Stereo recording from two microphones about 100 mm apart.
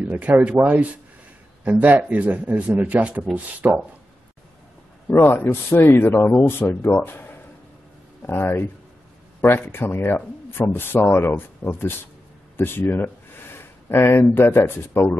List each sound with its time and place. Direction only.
0.0 s a man's voice: 15° right (ahead or behind)
5.1 s speech: 25° left (ahead or behind)